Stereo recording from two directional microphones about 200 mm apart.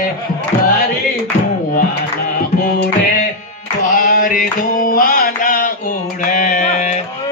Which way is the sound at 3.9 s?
45° left (ahead or behind).